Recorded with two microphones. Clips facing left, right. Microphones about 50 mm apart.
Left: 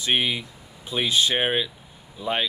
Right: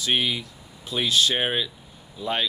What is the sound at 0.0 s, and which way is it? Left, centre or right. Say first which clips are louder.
Speech: left 1 dB; centre.